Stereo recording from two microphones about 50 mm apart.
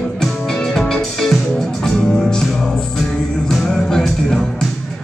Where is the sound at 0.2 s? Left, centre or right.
Centre.